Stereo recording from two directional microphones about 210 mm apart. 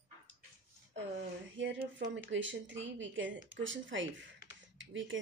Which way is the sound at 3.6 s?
60° right (ahead or behind).